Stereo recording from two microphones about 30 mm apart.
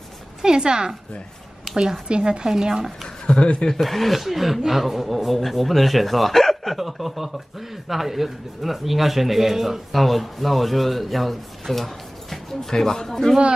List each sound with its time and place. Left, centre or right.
0.4 s a woman's voice: right
2.0 s speech: right
2.4 s speech: centre
3.3 s speech: left
3.8 s speech: centre
12.6 s speech: centre